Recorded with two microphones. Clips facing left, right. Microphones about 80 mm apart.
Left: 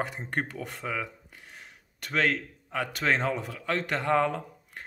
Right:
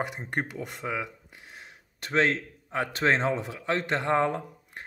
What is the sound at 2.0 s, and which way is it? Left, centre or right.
Speech, right.